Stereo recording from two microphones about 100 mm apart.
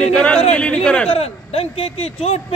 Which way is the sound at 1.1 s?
90° left.